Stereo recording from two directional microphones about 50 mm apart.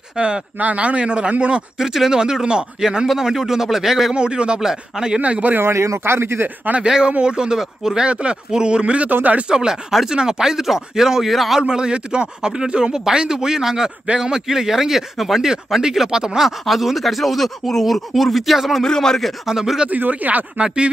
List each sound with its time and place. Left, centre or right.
0.1 s speech: centre
0.6 s speech: right
1.8 s speech: centre
5.2 s speech: right
5.6 s speech: right
6.8 s speech: centre; by 9.5 s right
9.5 s speech: centre
11.6 s speech: centre
18.9 s speech: centre
19.4 s speech: centre
19.9 s speech: right
20.5 s speech: right